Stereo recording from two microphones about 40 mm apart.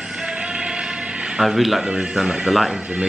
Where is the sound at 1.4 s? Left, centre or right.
Centre.